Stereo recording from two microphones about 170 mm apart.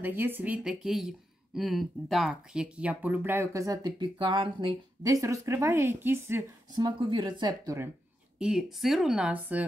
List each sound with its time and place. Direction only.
0.0 s speech: 10° right (ahead or behind)
6.7 s speech: 25° right (ahead or behind)
8.4 s speech: 5° right (ahead or behind)